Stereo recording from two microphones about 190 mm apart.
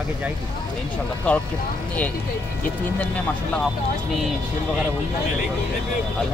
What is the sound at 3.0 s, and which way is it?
Speech, 10° left (ahead or behind).